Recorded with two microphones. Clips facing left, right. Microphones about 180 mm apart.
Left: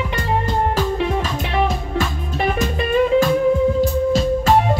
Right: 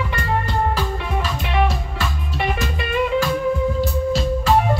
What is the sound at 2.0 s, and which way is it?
Music, 35° left (ahead or behind).